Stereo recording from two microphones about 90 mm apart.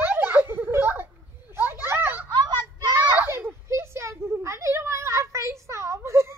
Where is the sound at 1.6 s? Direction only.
25° right (ahead or behind).